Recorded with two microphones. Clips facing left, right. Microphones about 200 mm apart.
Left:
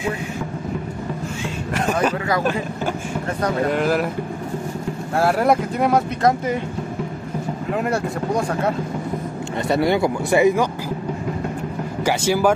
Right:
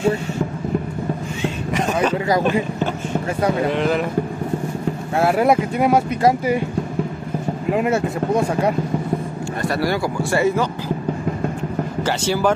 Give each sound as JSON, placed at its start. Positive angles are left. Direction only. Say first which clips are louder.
{"t": 3.6, "sound": "speech", "louder": "even", "side_deg": 5}
{"t": 5.1, "sound": "speech", "louder": "right 1 dB", "side_deg": 0}
{"t": 7.7, "sound": "speech", "louder": "right 3 dB", "side_deg": -5}
{"t": 9.6, "sound": "speech", "louder": "left 3 dB", "side_deg": 20}
{"t": 12.0, "sound": "speech", "louder": "left 2 dB", "side_deg": 10}